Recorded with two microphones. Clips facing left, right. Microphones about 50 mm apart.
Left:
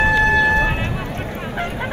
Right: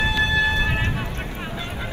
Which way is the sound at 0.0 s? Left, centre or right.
Left.